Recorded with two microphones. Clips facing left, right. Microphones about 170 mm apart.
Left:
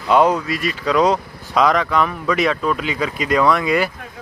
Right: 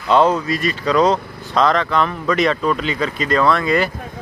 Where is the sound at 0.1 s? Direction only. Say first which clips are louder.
Even; 10° left (ahead or behind).